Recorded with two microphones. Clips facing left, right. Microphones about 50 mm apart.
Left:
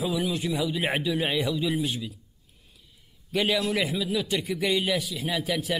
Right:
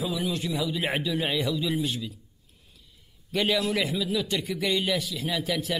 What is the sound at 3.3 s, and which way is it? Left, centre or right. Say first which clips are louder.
A man's voice: even; centre.